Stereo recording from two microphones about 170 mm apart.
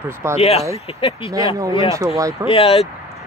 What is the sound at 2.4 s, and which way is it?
Speech, 35° left (ahead or behind).